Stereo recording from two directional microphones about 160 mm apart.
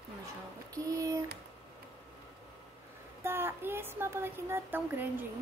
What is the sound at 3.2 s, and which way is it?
Speech, 15° right (ahead or behind).